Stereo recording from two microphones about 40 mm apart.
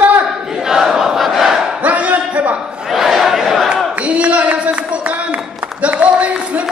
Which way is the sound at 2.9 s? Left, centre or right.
Centre.